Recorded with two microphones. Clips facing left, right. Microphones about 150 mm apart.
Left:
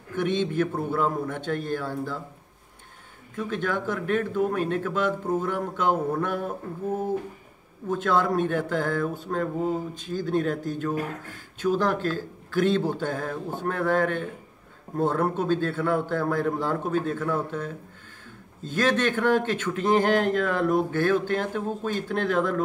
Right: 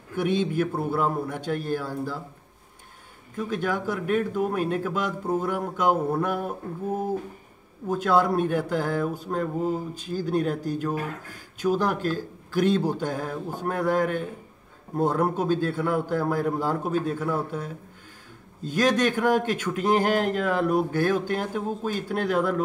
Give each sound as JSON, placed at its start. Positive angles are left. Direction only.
{"t": 0.1, "sound": "speech", "side_deg": -10}
{"t": 3.4, "sound": "speech", "side_deg": -10}
{"t": 7.9, "sound": "speech", "side_deg": -10}